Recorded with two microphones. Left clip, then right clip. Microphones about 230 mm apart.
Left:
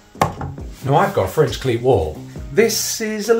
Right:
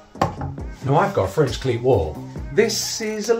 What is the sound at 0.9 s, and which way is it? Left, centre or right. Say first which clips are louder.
Speech: left 3 dB; centre.